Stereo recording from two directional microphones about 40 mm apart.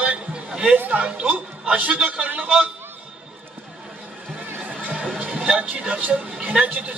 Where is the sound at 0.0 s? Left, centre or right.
Right.